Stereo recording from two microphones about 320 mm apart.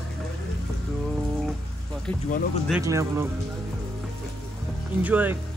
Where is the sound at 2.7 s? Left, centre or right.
Centre.